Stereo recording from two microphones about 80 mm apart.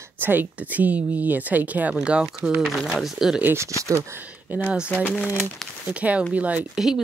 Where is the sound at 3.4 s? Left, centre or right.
Right.